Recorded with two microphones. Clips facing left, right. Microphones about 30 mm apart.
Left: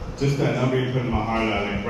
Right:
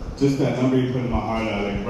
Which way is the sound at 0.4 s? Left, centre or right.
Left.